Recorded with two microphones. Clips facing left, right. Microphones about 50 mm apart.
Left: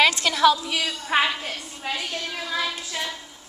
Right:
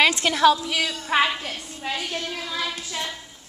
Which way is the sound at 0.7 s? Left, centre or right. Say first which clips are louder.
Right 1 dB; right.